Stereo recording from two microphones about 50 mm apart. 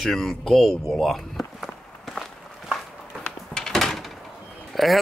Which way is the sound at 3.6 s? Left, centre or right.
Centre.